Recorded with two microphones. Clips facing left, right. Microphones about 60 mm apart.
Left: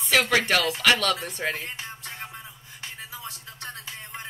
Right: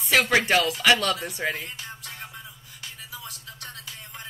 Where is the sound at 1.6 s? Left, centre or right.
Left.